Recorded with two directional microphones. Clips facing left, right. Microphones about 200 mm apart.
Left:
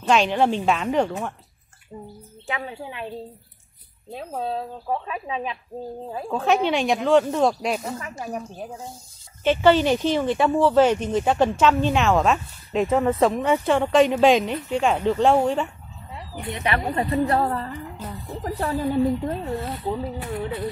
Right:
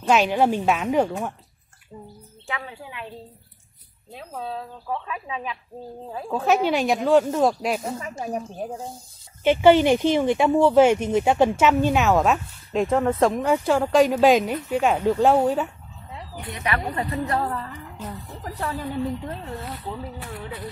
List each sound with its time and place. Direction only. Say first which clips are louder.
0.0 s speech: even; 5° right (ahead or behind)
2.4 s speech: left 3 dB; 25° left (ahead or behind)
4.1 s speech: left 4 dB; 40° left (ahead or behind)
6.3 s speech: even; centre (ahead or behind)
8.2 s a woman's voice: right 2 dB; 25° right (ahead or behind)
9.4 s speech: right 2 dB; 10° right (ahead or behind)
16.3 s a woman's voice: left 2 dB; 25° left (ahead or behind)